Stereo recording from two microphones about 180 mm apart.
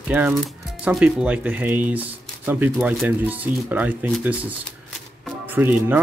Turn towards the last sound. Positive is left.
turn(degrees=-10)  # may be behind; listen again after turning